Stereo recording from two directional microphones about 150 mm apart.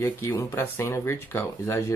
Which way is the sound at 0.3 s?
20° left (ahead or behind).